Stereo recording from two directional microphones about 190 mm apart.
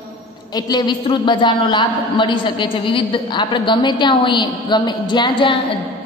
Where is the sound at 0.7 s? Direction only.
25° left (ahead or behind).